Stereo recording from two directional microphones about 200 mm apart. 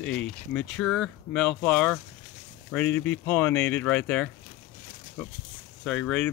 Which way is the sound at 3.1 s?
5° left (ahead or behind).